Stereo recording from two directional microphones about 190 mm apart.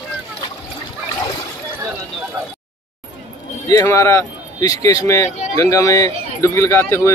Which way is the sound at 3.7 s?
15° left (ahead or behind).